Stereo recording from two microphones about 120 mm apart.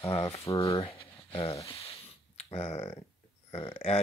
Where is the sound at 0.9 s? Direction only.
50° left (ahead or behind).